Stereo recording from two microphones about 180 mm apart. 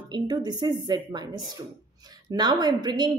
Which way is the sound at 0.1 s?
25° right (ahead or behind).